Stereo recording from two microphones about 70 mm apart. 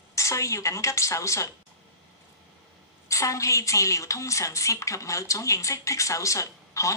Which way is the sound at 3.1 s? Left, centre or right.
Left.